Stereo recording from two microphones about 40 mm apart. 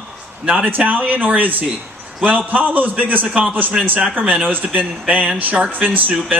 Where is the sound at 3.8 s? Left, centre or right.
Centre.